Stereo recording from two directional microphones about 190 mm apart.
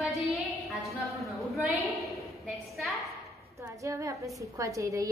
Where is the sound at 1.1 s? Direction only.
Centre (ahead or behind).